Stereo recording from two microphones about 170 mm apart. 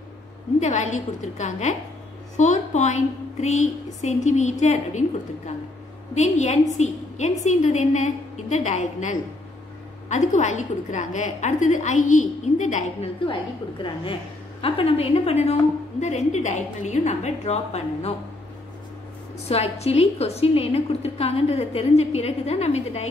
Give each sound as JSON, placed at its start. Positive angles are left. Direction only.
{"t": 0.6, "sound": "a woman's voice", "side_deg": 45}
{"t": 6.1, "sound": "a woman's voice", "side_deg": 45}
{"t": 14.6, "sound": "a woman's voice", "side_deg": 35}
{"t": 19.4, "sound": "a woman's voice", "side_deg": 35}